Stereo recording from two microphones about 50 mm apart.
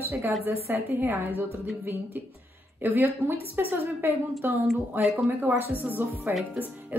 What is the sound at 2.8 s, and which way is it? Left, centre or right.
Speech, right.